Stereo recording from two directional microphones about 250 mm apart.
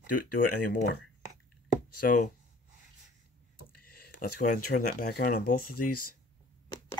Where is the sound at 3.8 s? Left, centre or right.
Left.